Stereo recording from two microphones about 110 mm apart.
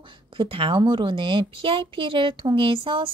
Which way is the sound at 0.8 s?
50° right (ahead or behind).